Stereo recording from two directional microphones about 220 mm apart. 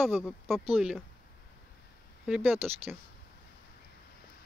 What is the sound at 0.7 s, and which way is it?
Speech, centre (ahead or behind).